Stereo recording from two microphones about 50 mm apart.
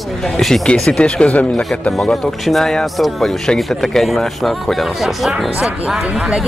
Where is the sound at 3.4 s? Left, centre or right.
Centre.